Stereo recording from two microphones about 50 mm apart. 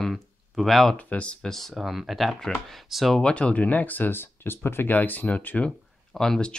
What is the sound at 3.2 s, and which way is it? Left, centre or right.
Speech, left.